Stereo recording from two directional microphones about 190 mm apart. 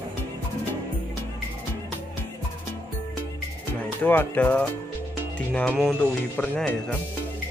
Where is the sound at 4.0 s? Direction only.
10° left (ahead or behind).